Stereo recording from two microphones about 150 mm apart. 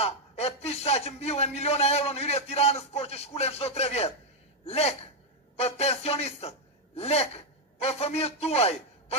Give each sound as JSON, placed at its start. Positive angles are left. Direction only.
{"t": 0.0, "sound": "a man's voice", "side_deg": 45}